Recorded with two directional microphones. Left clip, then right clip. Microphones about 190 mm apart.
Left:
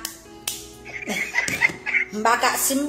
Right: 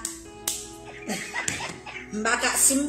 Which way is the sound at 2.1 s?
15° right (ahead or behind).